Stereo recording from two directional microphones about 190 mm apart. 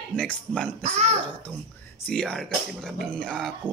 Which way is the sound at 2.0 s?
5° left (ahead or behind).